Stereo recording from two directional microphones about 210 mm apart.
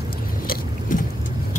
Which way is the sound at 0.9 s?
40° left (ahead or behind).